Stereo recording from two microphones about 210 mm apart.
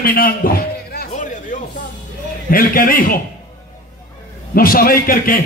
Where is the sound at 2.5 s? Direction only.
40° left (ahead or behind).